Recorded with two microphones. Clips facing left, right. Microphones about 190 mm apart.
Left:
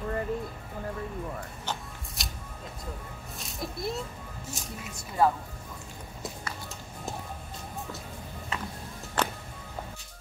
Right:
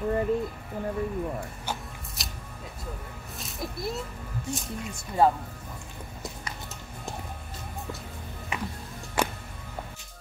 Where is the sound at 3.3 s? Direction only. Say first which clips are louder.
Right 1 dB; centre (ahead or behind).